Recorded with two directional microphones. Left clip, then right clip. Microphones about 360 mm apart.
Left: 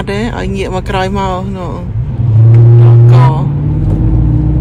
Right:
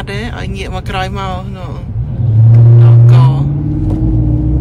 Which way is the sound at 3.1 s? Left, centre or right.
Centre.